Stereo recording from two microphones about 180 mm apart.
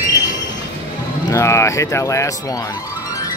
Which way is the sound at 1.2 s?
15° left (ahead or behind).